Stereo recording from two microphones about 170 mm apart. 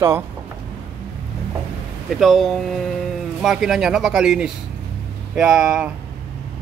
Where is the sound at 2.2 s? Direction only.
Centre (ahead or behind).